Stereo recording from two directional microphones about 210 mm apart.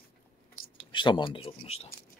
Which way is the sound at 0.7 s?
20° left (ahead or behind).